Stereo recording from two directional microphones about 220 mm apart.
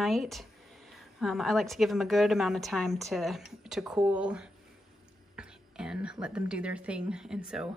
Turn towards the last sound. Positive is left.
turn(degrees=-5)  # may be behind; listen again after turning